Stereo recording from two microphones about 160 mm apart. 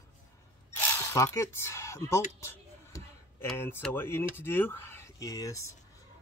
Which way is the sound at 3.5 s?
15° left (ahead or behind).